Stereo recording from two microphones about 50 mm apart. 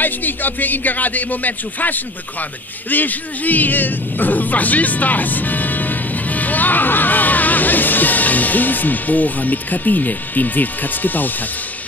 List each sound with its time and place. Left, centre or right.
0.0 s speech: left